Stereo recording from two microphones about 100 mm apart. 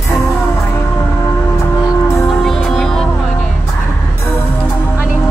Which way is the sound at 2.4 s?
Centre (ahead or behind).